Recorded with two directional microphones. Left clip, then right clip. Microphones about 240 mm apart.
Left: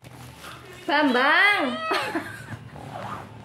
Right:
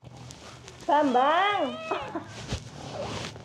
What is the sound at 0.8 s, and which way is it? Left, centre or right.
Speech, left.